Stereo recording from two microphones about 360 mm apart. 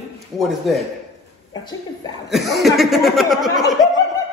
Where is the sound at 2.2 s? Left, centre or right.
Centre.